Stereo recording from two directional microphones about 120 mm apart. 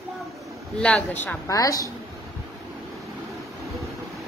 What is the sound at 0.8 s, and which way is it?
Speech, 10° left (ahead or behind).